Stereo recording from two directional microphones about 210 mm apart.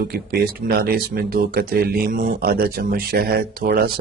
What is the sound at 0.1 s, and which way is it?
Speech, 45° right (ahead or behind).